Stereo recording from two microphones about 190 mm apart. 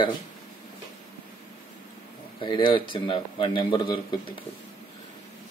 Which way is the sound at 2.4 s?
25° left (ahead or behind).